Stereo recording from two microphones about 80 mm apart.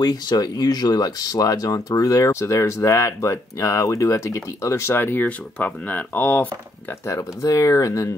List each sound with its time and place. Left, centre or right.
0.0 s speech: left; by 6.5 s centre
7.1 s speech: left